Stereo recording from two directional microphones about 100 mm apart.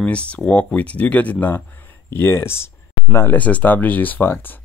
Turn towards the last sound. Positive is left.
turn(degrees=20)  # may be behind; listen again after turning